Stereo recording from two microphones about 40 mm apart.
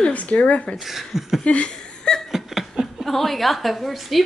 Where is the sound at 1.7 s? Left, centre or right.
Left.